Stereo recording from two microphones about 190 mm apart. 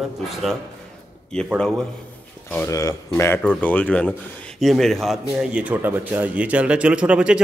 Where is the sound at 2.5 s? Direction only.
15° left (ahead or behind).